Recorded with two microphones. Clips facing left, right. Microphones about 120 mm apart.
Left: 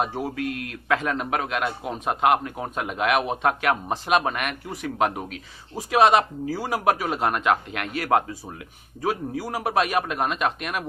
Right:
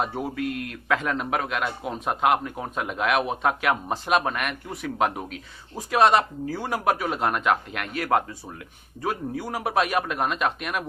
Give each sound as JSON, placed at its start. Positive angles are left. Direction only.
{"t": 0.0, "sound": "a man's voice", "side_deg": 5}